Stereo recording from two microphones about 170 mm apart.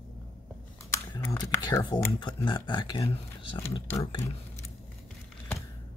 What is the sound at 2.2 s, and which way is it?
Speech, 25° left (ahead or behind).